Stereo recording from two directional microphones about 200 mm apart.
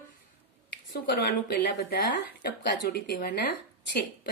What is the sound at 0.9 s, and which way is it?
A woman's voice, 50° left (ahead or behind).